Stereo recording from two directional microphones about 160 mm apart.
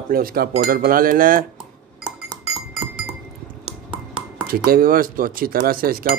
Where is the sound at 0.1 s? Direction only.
65° right (ahead or behind).